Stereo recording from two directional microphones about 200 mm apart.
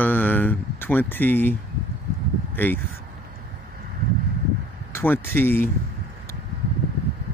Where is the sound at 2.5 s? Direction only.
10° left (ahead or behind).